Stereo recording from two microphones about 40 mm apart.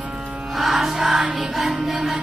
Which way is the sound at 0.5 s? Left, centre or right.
Centre.